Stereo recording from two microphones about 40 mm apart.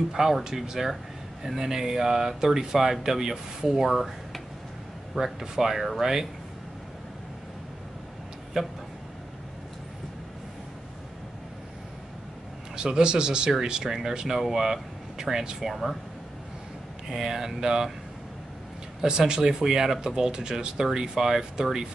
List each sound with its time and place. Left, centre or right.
0.1 s speech: centre
8.5 s speech: centre
12.7 s speech: centre
17.1 s speech: centre
18.9 s speech: centre